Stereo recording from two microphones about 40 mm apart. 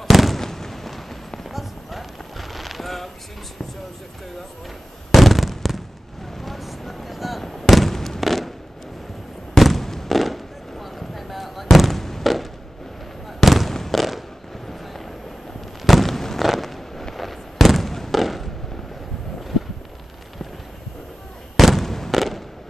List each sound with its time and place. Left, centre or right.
0.1 s fireworks: centre
0.4 s a sound: centre
5.1 s fireworks: centre
9.5 s fireworks: centre
15.8 s a sound: centre
16.4 s fireworks: centre
21.5 s fireworks: centre